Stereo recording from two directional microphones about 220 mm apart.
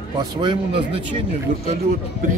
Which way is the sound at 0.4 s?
25° right (ahead or behind).